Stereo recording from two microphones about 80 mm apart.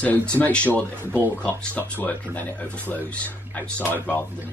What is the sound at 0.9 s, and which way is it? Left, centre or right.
Speech, right.